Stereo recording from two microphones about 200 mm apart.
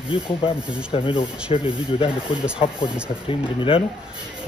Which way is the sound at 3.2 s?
25° left (ahead or behind).